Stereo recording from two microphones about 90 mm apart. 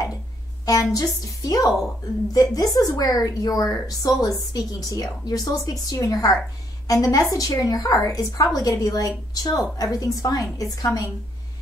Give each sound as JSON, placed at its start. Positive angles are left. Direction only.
{"t": 0.7, "sound": "a woman's voice", "side_deg": 40}